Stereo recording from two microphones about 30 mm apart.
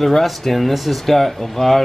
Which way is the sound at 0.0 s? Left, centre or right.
Centre.